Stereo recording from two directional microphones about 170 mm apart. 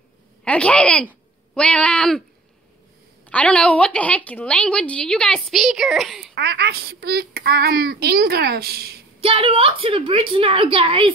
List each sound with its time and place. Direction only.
0.5 s speech: 5° left (ahead or behind)
3.3 s a woman's voice: 5° left (ahead or behind)
6.3 s a woman's voice: 75° right (ahead or behind)
9.2 s a woman's voice: 30° right (ahead or behind)